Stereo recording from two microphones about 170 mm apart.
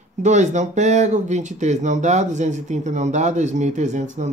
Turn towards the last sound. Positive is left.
turn(degrees=-45)  # may be behind; listen again after turning